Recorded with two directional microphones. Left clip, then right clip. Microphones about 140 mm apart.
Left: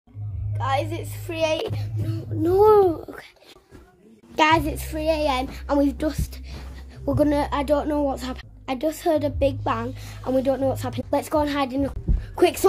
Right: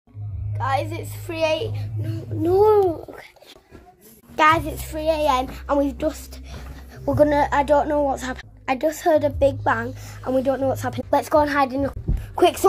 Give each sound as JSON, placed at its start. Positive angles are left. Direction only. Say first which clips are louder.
{"t": 0.6, "sound": "a child's voice", "louder": "right 1 dB", "side_deg": 0}
{"t": 2.7, "sound": "a child's voice", "louder": "left 1 dB", "side_deg": 40}
{"t": 4.4, "sound": "a child's voice", "louder": "right 2 dB", "side_deg": 25}
{"t": 8.6, "sound": "a child's voice", "louder": "right 3 dB", "side_deg": 0}